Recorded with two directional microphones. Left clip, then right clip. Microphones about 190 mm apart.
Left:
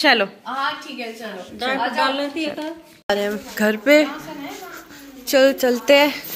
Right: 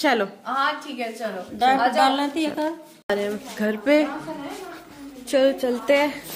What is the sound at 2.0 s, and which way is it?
Speech, 70° right (ahead or behind).